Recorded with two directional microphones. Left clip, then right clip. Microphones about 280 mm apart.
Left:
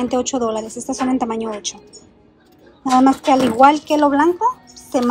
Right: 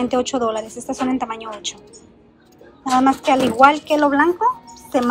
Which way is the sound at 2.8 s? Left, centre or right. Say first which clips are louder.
Left 2 dB; centre.